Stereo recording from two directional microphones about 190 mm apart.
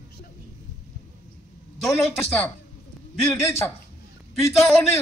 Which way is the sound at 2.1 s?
5° left (ahead or behind).